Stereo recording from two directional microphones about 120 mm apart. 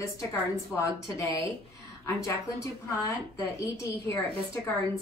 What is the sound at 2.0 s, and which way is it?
A woman's voice, 25° left (ahead or behind).